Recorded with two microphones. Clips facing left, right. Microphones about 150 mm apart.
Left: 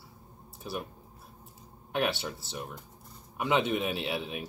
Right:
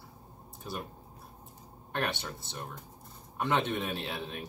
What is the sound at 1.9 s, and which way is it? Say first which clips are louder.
Speech: left 4 dB; 5° left (ahead or behind).